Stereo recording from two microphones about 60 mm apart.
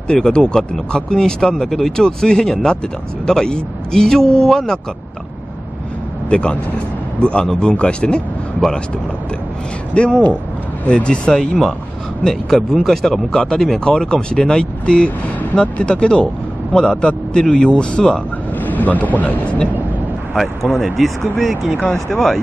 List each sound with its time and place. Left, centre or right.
0.1 s speech: centre
6.3 s speech: centre
9.9 s speech: centre
18.6 s speech: left
20.3 s speech: centre